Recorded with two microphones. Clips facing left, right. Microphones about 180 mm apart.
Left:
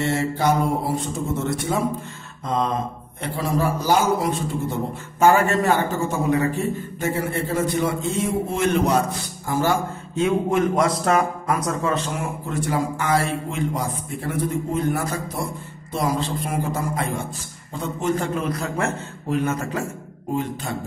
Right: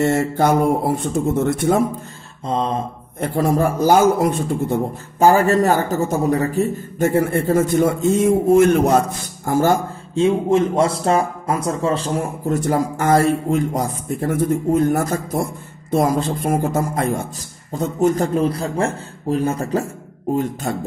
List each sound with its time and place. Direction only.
0.0 s speech: 45° right (ahead or behind)
2.4 s a man's voice: 30° right (ahead or behind)
3.2 s speech: 45° right (ahead or behind)
5.2 s speech: 35° right (ahead or behind)
10.1 s a man's voice: 25° right (ahead or behind)
20.7 s speech: 45° right (ahead or behind)